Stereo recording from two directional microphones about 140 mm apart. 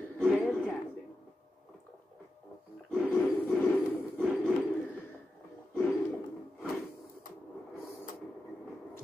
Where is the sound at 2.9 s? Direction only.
10° left (ahead or behind).